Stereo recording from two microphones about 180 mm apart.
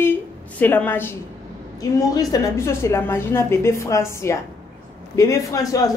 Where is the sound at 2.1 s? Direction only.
20° left (ahead or behind).